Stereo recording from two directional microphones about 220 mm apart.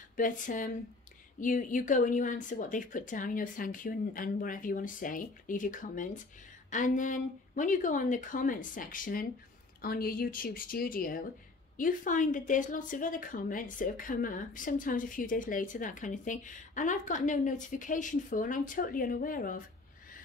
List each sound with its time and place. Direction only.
0.1 s speech: 35° left (ahead or behind)